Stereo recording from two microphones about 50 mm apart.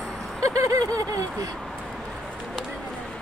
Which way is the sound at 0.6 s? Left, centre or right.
Right.